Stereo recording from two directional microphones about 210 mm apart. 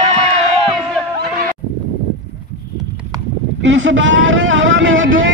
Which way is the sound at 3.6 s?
60° right (ahead or behind).